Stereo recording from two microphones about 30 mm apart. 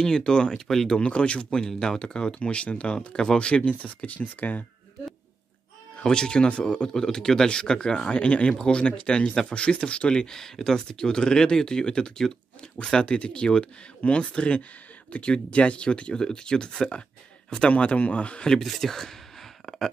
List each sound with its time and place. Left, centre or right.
0.0 s speech: left
0.7 s speech: centre
0.9 s speech: left
1.8 s speech: left
3.7 s speech: left
4.4 s speech: left
6.0 s speech: left
6.9 s speech: centre; by 10.2 s left
10.2 s speech: centre; by 16.2 s left
16.2 s speech: left
17.6 s speech: left
17.9 s a man's voice: left
18.8 s speech: centre